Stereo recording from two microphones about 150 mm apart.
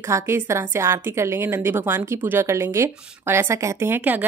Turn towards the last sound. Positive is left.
turn(degrees=-15)  # may be behind; listen again after turning